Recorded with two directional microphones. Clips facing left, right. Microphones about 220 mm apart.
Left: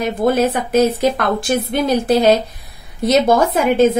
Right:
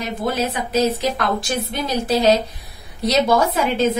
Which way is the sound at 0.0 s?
50° left (ahead or behind).